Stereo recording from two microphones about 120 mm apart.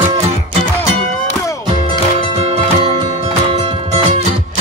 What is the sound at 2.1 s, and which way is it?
Music, 55° right (ahead or behind).